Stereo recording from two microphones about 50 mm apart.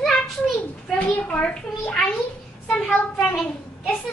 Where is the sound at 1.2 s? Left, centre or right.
Left.